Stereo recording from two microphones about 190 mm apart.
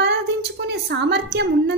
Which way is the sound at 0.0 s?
65° right (ahead or behind).